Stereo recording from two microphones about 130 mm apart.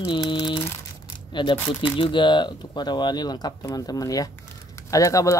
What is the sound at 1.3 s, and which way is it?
Speech, 40° left (ahead or behind).